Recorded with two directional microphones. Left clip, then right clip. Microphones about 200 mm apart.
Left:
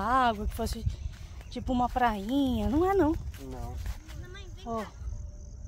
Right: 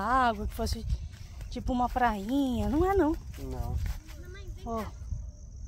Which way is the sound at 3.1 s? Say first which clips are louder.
Even; 20° right (ahead or behind).